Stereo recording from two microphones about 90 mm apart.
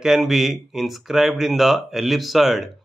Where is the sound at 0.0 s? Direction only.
Centre (ahead or behind).